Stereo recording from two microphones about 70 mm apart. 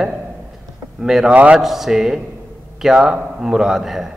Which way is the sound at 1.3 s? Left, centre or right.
Centre.